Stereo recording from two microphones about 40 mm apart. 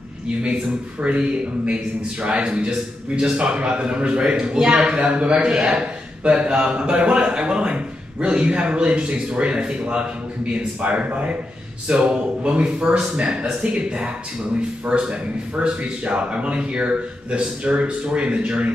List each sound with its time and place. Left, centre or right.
1.0 s a man's voice: right